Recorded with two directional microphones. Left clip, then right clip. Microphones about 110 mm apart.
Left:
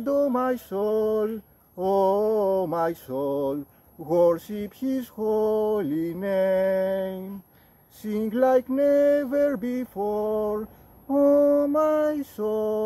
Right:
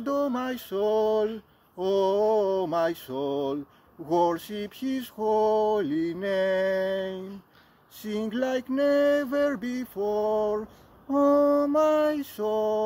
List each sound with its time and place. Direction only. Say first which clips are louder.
0.2 s male singing: left 5 dB; 30° left (ahead or behind)
4.1 s mantra: left 4 dB; 30° left (ahead or behind)
8.0 s male singing: left 6 dB; 30° left (ahead or behind)